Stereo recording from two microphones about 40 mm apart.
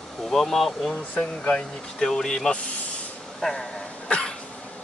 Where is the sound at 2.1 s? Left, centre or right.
Centre.